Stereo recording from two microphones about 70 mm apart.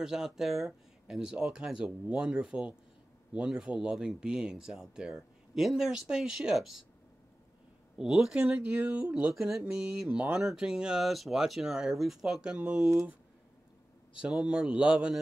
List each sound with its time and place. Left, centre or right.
0.0 s speech: centre
8.0 s speech: centre
8.4 s speech: centre
9.3 s speech: centre
14.2 s speech: centre